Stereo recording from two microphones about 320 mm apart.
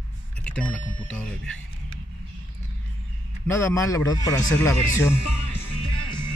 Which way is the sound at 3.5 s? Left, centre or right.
Centre.